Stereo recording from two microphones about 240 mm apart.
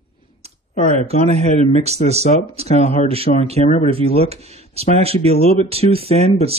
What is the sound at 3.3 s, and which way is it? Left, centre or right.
Speech, left.